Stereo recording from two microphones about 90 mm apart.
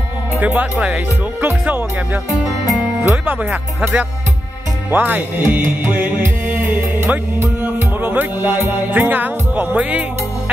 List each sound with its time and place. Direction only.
0.4 s speech: 15° right (ahead or behind)
3.0 s speech: 20° right (ahead or behind)
4.9 s music: 20° right (ahead or behind)